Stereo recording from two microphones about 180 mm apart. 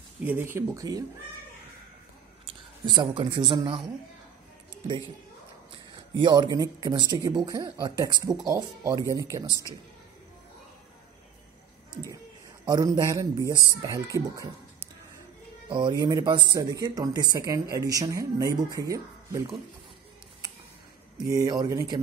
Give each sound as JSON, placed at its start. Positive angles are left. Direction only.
{"t": 0.2, "sound": "speech", "side_deg": -10}
{"t": 2.4, "sound": "speech", "side_deg": -25}
{"t": 5.7, "sound": "speech", "side_deg": -25}
{"t": 12.6, "sound": "speech", "side_deg": -20}
{"t": 15.7, "sound": "speech", "side_deg": -25}
{"t": 21.3, "sound": "speech", "side_deg": -20}